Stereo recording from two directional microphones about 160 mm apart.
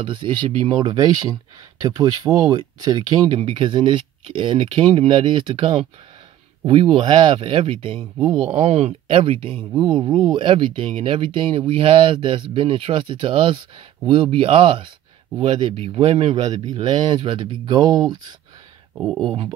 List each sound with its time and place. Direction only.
0.0 s speech: 30° right (ahead or behind)
8.5 s speech: 45° right (ahead or behind); by 18.2 s 25° right (ahead or behind)
18.9 s speech: 10° right (ahead or behind)
19.2 s speech: 35° right (ahead or behind)